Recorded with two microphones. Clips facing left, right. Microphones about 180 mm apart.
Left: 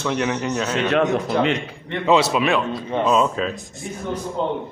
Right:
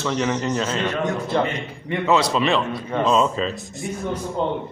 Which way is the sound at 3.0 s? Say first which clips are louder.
Even; 5° left (ahead or behind).